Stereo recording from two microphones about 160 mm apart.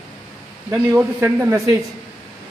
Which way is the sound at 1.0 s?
10° right (ahead or behind).